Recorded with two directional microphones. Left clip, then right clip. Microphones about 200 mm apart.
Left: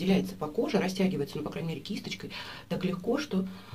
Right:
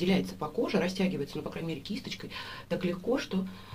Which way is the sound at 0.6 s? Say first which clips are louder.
Left 1 dB; 10° left (ahead or behind).